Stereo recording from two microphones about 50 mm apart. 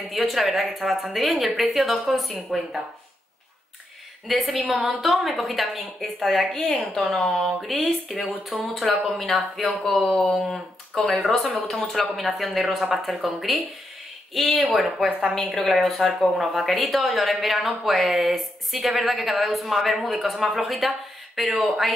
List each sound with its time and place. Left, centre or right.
0.1 s a woman's voice: centre
4.3 s a woman's voice: centre
15.0 s a woman's voice: right
15.5 s a woman's voice: centre